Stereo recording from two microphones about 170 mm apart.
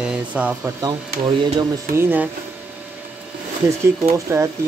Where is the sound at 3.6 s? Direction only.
15° right (ahead or behind).